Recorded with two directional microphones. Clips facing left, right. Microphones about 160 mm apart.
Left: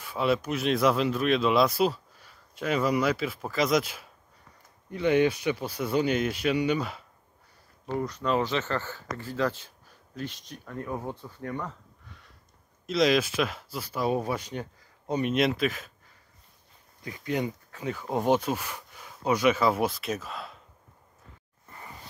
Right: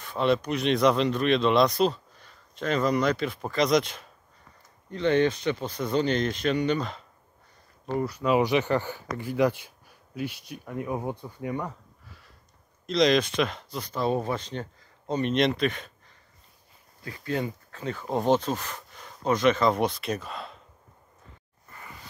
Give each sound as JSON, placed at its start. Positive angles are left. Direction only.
{"t": 0.0, "sound": "speech", "side_deg": 5}
{"t": 7.8, "sound": "speech", "side_deg": -5}
{"t": 12.8, "sound": "speech", "side_deg": 5}
{"t": 17.0, "sound": "speech", "side_deg": 20}